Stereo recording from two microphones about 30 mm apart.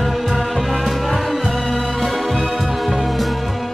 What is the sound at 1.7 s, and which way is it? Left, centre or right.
Music, centre.